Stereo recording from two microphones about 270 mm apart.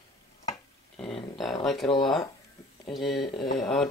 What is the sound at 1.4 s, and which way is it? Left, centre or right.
Speech, centre.